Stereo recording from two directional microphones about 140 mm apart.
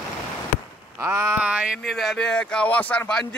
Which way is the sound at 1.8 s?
Centre (ahead or behind).